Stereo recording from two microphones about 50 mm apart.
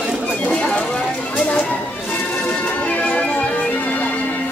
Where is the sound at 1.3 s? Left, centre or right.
Left.